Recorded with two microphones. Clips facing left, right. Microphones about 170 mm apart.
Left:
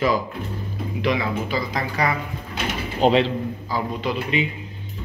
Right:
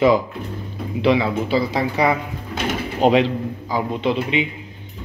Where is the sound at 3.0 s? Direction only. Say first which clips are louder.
Right 2 dB; 10° right (ahead or behind).